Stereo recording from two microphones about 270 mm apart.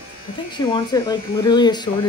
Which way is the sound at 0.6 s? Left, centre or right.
Centre.